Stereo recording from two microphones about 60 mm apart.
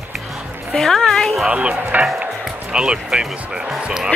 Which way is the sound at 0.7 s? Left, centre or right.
Centre.